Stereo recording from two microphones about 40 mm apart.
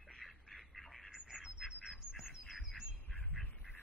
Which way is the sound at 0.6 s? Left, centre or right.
Centre.